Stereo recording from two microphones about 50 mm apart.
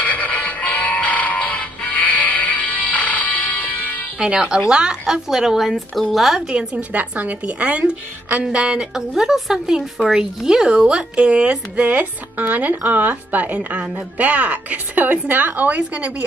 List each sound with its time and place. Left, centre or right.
0.0 s music: left
4.2 s a woman's voice: centre
6.4 s a woman's voice: centre
6.9 s a woman's voice: right